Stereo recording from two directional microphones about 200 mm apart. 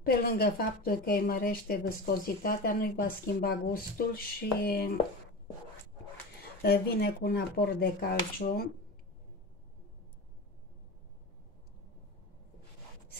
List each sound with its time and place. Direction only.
0.0 s speech: 50° left (ahead or behind)
6.6 s speech: 50° left (ahead or behind)